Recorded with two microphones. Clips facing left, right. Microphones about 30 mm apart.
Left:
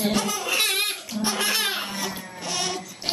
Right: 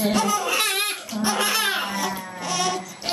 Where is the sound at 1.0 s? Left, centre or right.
Centre.